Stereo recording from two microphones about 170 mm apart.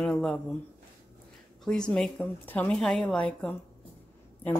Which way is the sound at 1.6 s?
5° left (ahead or behind).